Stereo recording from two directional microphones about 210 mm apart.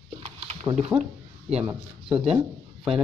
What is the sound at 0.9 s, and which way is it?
Speech, centre (ahead or behind).